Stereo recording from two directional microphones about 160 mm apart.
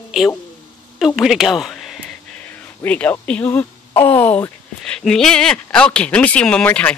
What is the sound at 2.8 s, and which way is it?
Speech, 10° left (ahead or behind).